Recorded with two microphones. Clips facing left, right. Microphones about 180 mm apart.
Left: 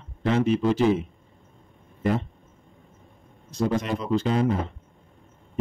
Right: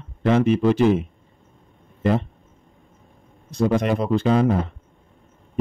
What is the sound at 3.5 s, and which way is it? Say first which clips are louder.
Speech: right 5 dB; 60° right (ahead or behind).